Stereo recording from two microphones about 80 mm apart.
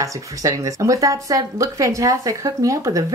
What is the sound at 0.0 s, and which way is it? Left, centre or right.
Speech, right.